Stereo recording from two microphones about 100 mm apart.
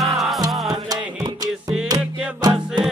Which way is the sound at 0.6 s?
40° right (ahead or behind).